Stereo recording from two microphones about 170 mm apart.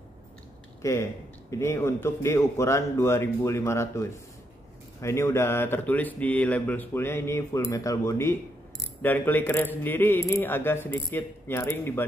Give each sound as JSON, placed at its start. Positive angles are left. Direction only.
{"t": 0.8, "sound": "speech", "side_deg": 15}